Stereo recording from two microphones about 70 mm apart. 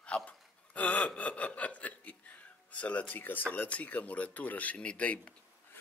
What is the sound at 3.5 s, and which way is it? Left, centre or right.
Speech, left.